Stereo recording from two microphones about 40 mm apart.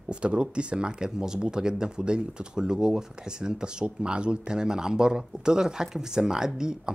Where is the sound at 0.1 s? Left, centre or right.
Right.